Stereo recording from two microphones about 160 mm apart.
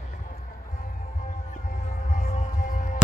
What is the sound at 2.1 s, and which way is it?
Music, 55° left (ahead or behind).